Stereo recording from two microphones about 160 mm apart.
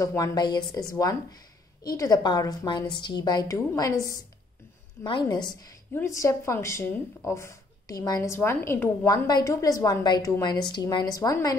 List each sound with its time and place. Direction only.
0.0 s a woman's voice: 20° left (ahead or behind)
5.0 s a woman's voice: 30° left (ahead or behind)